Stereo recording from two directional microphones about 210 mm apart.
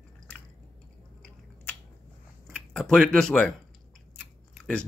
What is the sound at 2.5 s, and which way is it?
Speech, centre (ahead or behind).